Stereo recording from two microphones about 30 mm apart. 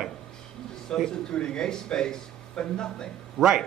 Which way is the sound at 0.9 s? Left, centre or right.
Left.